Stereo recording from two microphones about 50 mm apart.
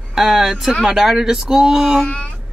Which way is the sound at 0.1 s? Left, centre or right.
Centre.